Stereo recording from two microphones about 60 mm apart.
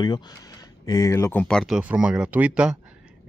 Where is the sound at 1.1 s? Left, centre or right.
Left.